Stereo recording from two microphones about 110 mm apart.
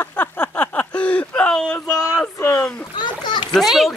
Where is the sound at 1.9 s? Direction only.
30° left (ahead or behind).